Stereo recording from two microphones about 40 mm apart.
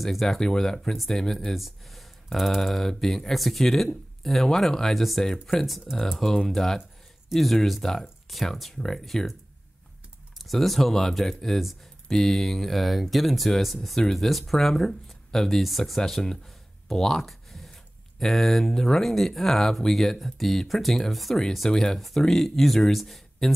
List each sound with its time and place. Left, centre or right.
0.0 s speech: centre
1.2 s speech: centre
1.5 s speech: centre
10.3 s speech: centre
16.9 s a sound: centre
18.2 s speech: centre
21.6 s speech: centre